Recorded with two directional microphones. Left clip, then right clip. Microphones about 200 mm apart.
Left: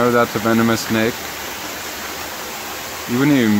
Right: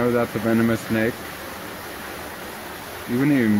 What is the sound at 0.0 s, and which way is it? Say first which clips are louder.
Speech: left 6 dB; 10° left (ahead or behind).